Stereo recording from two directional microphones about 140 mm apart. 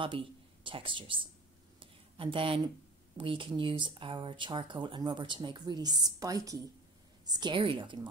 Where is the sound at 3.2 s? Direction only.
35° right (ahead or behind).